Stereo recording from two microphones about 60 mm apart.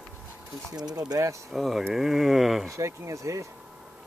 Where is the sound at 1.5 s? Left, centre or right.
Centre.